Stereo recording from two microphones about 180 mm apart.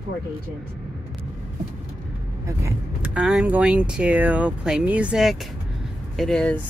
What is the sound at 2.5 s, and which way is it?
Speech, 10° right (ahead or behind).